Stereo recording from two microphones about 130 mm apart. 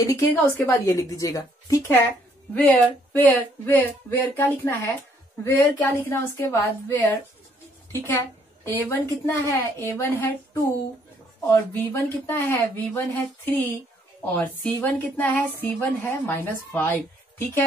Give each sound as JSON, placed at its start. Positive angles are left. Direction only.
{"t": 0.0, "sound": "a woman's voice", "side_deg": 25}
{"t": 2.5, "sound": "a woman's voice", "side_deg": 10}
{"t": 14.3, "sound": "speech", "side_deg": 10}